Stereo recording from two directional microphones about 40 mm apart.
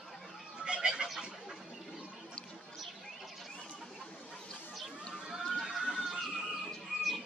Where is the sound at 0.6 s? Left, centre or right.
Centre.